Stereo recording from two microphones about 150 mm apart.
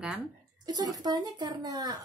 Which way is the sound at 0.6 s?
25° right (ahead or behind).